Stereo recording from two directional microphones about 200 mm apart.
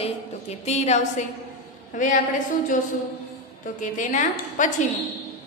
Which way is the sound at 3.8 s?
40° left (ahead or behind).